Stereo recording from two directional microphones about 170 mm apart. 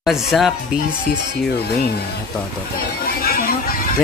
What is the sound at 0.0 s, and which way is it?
Speech, centre (ahead or behind).